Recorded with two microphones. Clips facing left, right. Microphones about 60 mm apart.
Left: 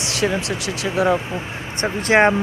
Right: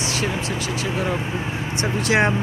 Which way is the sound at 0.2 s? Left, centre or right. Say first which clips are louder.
Left 3 dB; left.